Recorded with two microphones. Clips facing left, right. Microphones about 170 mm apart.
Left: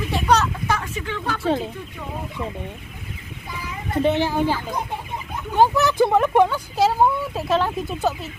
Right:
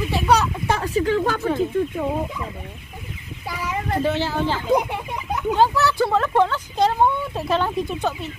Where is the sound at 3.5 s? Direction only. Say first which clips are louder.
Right 5 dB; 85° right.